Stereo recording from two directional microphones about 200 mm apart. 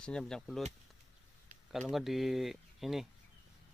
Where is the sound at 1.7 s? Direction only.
Centre (ahead or behind).